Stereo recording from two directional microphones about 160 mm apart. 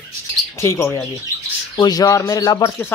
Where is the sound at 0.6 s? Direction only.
15° left (ahead or behind).